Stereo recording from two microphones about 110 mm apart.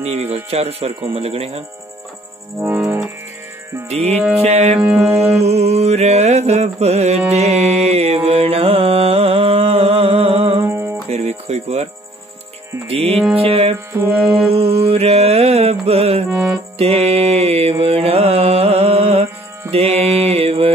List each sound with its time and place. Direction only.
0.0 s speech: 70° right (ahead or behind)
2.6 s music: 20° right (ahead or behind)
3.9 s speech: 80° right
4.4 s music: 90° right
4.7 s music: 15° right (ahead or behind)
5.3 s mantra: 75° right (ahead or behind); by 10.6 s 60° right (ahead or behind)
10.6 s music: 20° right (ahead or behind)
11.1 s music: 80° right
12.8 s music: 65° right (ahead or behind)
14.5 s mantra: 60° right (ahead or behind)
16.3 s music: 10° right (ahead or behind)
16.7 s mantra: 65° right (ahead or behind)